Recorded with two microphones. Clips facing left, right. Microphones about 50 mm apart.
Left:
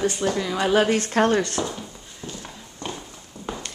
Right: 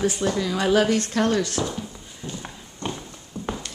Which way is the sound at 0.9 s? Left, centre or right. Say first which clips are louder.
Left 2 dB; left.